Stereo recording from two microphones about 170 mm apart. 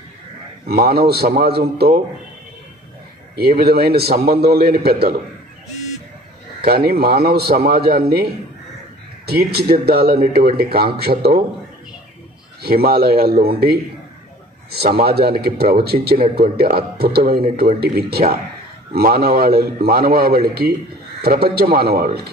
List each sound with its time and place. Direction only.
0.7 s a man's voice: 65° right (ahead or behind)
3.3 s a man's voice: 65° right (ahead or behind)
6.7 s a man's voice: 60° right (ahead or behind)
12.6 s a man's voice: 65° right (ahead or behind)
14.8 s a man's voice: 65° right (ahead or behind)